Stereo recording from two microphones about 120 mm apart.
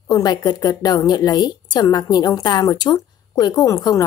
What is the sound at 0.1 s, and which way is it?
A woman's voice, 35° left (ahead or behind).